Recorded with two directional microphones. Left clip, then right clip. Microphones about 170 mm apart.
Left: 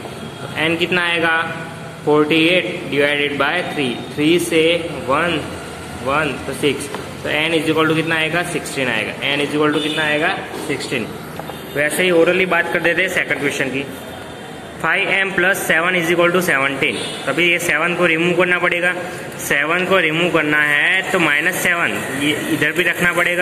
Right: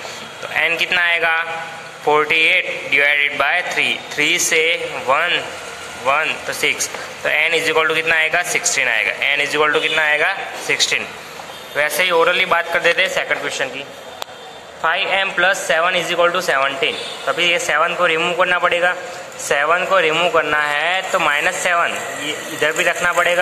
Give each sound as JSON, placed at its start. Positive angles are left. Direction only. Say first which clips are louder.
{"t": 0.6, "sound": "speech", "louder": "right 1 dB", "side_deg": -20}
{"t": 9.9, "sound": "a man's voice", "louder": "right 2 dB", "side_deg": -45}
{"t": 11.8, "sound": "speech", "louder": "even", "side_deg": -15}
{"t": 15.0, "sound": "speech", "louder": "left 1 dB", "side_deg": -15}
{"t": 17.4, "sound": "a man's voice", "louder": "left 1 dB", "side_deg": -90}
{"t": 17.7, "sound": "speech", "louder": "even", "side_deg": -10}